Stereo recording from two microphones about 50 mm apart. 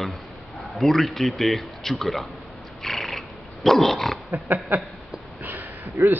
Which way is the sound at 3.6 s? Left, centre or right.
Centre.